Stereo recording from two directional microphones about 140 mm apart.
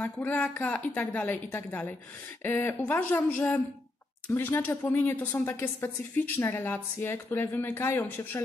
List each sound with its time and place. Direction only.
0.0 s a woman's voice: 10° left (ahead or behind)